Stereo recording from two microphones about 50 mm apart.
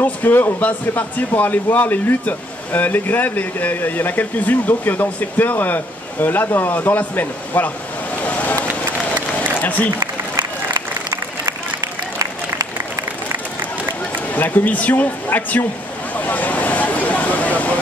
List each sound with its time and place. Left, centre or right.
0.0 s a man's voice: left
13.6 s run: right
14.3 s speech: left
16.2 s a sound: left